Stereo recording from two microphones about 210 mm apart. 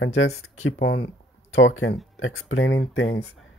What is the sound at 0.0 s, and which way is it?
Speech, 75° left (ahead or behind).